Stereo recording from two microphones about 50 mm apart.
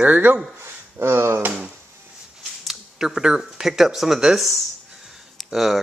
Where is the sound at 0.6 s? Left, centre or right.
Right.